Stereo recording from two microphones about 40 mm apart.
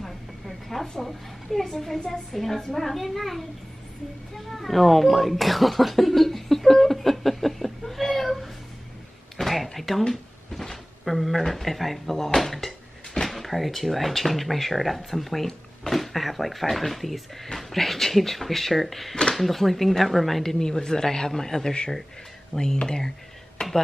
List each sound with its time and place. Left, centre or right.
0.0 s a sound: centre
0.9 s a woman's voice: centre
4.5 s a woman's voice: centre
20.4 s a man's voice: centre
22.8 s a man's voice: centre